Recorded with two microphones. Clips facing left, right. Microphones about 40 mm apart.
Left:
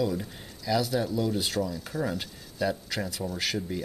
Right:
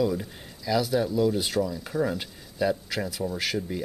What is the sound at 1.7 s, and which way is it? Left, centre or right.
Speech, centre.